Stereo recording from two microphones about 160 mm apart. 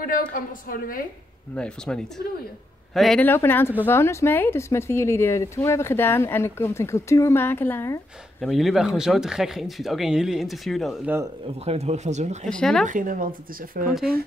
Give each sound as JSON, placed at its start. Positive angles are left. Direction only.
{"t": 0.0, "sound": "a woman's voice", "side_deg": 60}
{"t": 1.5, "sound": "speech", "side_deg": 5}
{"t": 3.3, "sound": "a woman's voice", "side_deg": 15}
{"t": 8.4, "sound": "speech", "side_deg": 0}
{"t": 11.4, "sound": "speech", "side_deg": -40}
{"t": 12.4, "sound": "speech", "side_deg": 5}
{"t": 12.8, "sound": "speech", "side_deg": -55}